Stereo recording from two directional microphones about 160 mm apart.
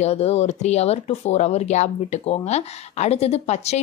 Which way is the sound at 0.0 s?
40° left (ahead or behind).